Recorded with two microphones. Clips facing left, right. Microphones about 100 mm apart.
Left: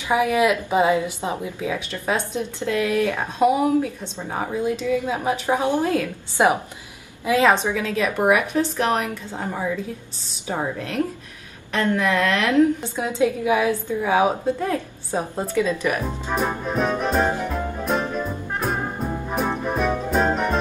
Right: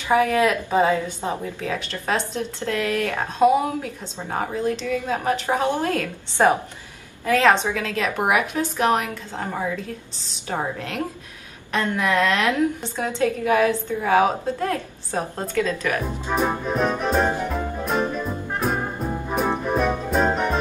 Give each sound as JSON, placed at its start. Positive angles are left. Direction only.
{"t": 0.1, "sound": "speech", "side_deg": 15}
{"t": 8.5, "sound": "a woman's voice", "side_deg": -15}
{"t": 8.9, "sound": "speech", "side_deg": 5}
{"t": 11.7, "sound": "a woman's voice", "side_deg": -15}
{"t": 12.8, "sound": "speech", "side_deg": 10}
{"t": 16.3, "sound": "music", "side_deg": 0}